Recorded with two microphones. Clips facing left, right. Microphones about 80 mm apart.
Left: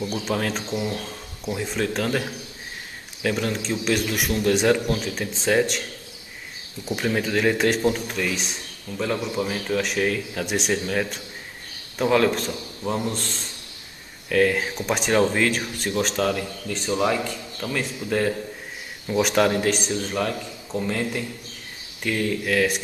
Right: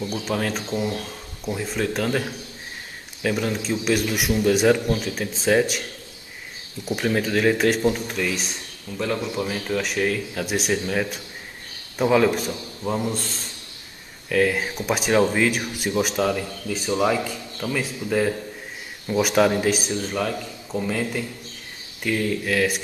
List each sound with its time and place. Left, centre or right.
0.0 s a man's voice: centre